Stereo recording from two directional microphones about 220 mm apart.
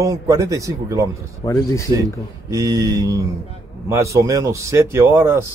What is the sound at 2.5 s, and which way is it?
Speech, 15° right (ahead or behind).